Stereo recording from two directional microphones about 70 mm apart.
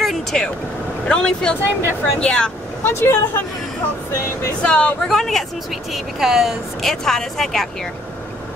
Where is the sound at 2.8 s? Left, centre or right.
Left.